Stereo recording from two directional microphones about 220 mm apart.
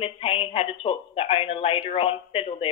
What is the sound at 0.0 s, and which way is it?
A woman's voice, 25° left (ahead or behind).